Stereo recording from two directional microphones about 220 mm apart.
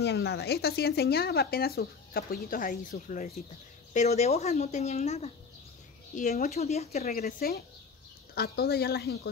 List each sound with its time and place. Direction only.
0.0 s speech: 50° left (ahead or behind); by 7.1 s 30° left (ahead or behind)
7.1 s speech: 40° left (ahead or behind)